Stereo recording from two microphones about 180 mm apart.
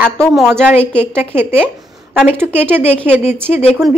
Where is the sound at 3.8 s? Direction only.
Centre (ahead or behind).